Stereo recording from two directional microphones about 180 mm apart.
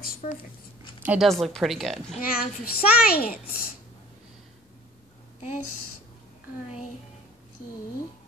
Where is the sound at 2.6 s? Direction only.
60° left (ahead or behind).